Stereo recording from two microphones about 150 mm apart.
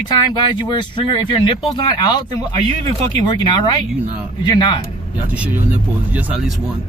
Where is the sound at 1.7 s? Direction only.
25° left (ahead or behind).